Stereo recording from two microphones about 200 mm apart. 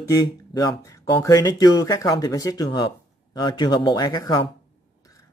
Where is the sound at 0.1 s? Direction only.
20° left (ahead or behind).